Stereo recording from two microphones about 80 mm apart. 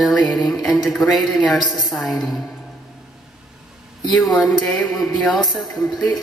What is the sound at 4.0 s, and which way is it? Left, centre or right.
Speech, left.